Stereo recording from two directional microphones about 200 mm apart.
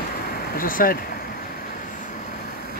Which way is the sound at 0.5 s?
45° left (ahead or behind).